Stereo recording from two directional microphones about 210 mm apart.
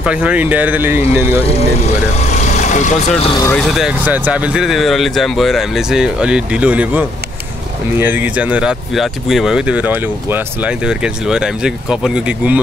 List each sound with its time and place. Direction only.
0.0 s speech: 5° right (ahead or behind)
2.5 s speech: 35° left (ahead or behind)
3.5 s speech: centre (ahead or behind)